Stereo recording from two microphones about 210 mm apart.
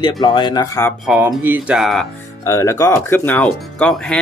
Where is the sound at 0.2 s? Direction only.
20° left (ahead or behind).